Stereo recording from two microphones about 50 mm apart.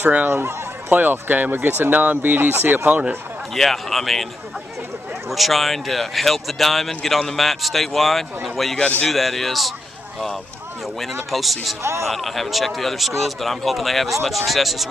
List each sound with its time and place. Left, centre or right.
0.0 s speech: right
0.3 s speech: right
3.5 s speech: centre
5.3 s speech: centre
11.0 s speech: centre
11.8 s a man's voice: right
12.1 s speech: centre